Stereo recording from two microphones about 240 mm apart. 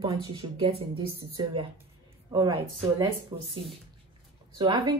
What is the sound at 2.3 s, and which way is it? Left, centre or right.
A woman's voice, centre.